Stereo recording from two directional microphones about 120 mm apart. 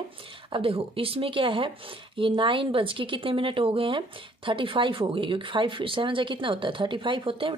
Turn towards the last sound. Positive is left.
turn(degrees=-45)  # may be behind; listen again after turning